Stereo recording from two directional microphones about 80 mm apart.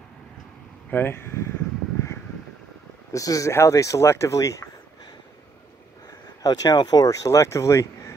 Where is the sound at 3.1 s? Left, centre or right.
Left.